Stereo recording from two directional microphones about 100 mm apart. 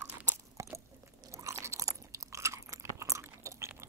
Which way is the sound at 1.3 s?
30° right (ahead or behind).